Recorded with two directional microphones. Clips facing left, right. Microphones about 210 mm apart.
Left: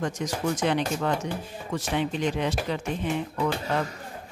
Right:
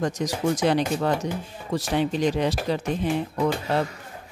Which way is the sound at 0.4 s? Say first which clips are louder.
Right 4 dB; 35° right (ahead or behind).